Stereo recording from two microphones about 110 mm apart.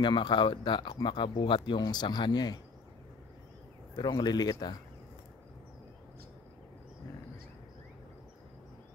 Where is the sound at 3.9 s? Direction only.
40° left (ahead or behind).